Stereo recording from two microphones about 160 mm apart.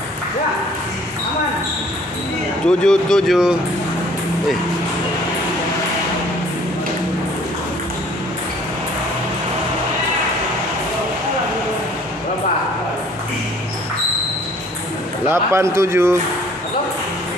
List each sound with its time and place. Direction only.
2.6 s speech: 5° left (ahead or behind)
15.2 s a man's voice: 15° right (ahead or behind)